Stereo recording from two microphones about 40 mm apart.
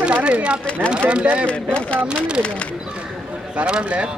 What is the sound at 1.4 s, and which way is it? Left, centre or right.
Speech, left.